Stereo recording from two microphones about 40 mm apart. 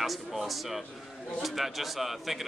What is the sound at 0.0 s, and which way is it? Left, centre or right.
Speech, centre.